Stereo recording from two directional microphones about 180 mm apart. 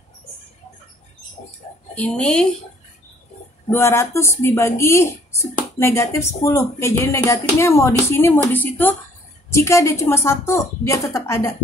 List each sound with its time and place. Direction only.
2.0 s a woman's voice: 5° left (ahead or behind)
3.7 s speech: 15° left (ahead or behind)
9.5 s speech: 15° left (ahead or behind)